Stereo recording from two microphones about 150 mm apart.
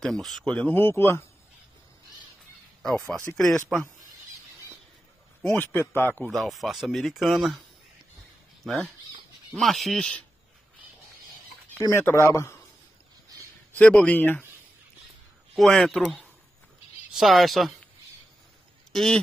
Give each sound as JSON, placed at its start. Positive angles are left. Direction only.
{"t": 0.0, "sound": "speech", "side_deg": 0}
{"t": 3.3, "sound": "a man's voice", "side_deg": 5}
{"t": 5.4, "sound": "a man's voice", "side_deg": 15}
{"t": 6.3, "sound": "speech", "side_deg": 0}
{"t": 8.6, "sound": "speech", "side_deg": 0}
{"t": 11.8, "sound": "speech", "side_deg": 15}
{"t": 13.7, "sound": "a man's voice", "side_deg": 10}
{"t": 15.5, "sound": "speech", "side_deg": 5}
{"t": 18.9, "sound": "speech", "side_deg": 5}